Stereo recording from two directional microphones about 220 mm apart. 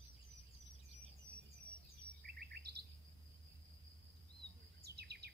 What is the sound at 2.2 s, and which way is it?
Bird, 45° right (ahead or behind).